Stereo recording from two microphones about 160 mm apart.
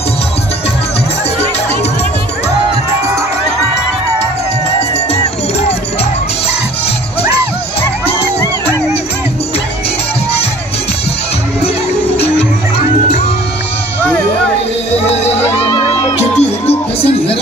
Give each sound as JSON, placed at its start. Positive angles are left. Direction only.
{"t": 12.2, "sound": "music", "side_deg": 40}
{"t": 16.3, "sound": "music", "side_deg": 40}